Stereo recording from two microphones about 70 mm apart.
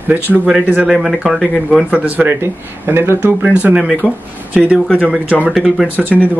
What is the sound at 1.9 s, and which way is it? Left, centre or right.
Speech, right.